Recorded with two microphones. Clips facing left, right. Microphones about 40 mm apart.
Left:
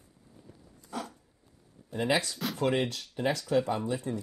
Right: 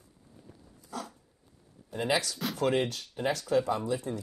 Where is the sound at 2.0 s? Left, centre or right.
Left.